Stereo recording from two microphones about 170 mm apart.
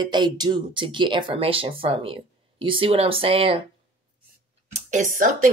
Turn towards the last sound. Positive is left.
turn(degrees=-50)  # may be behind; listen again after turning